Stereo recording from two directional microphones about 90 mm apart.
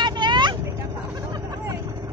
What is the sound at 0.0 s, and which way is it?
Vehicle, 55° right (ahead or behind).